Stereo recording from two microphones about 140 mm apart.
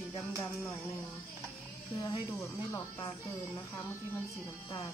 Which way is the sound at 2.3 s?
20° left (ahead or behind).